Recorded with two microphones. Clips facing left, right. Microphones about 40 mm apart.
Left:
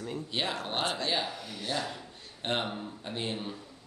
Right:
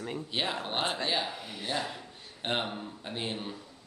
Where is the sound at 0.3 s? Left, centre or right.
Centre.